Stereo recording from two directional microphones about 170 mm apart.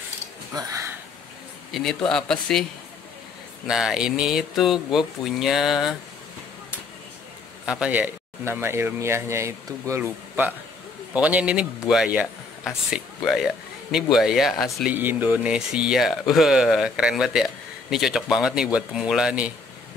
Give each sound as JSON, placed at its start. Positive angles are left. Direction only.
{"t": 0.6, "sound": "speech", "side_deg": -20}
{"t": 1.7, "sound": "a man's voice", "side_deg": 0}
{"t": 3.6, "sound": "speech", "side_deg": -5}
{"t": 7.6, "sound": "speech", "side_deg": -5}
{"t": 15.0, "sound": "speech", "side_deg": -10}